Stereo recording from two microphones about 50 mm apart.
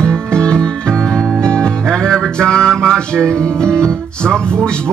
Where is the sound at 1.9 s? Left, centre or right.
Centre.